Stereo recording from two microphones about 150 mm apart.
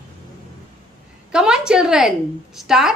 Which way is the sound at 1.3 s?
5° right (ahead or behind).